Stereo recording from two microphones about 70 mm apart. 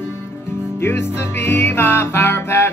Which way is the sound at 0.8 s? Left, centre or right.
Left.